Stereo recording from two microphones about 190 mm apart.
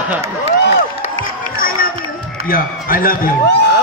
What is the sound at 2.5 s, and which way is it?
A man's voice, 50° left (ahead or behind).